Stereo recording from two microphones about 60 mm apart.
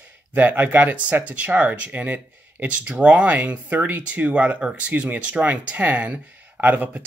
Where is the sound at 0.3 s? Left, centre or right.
Right.